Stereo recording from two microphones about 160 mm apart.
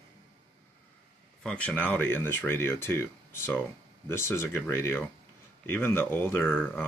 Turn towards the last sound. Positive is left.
turn(degrees=10)  # may be behind; listen again after turning